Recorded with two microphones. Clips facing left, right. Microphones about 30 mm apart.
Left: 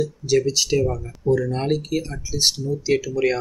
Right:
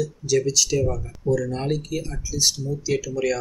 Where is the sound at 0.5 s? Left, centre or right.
Left.